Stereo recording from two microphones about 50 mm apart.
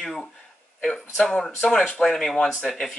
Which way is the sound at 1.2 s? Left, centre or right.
Centre.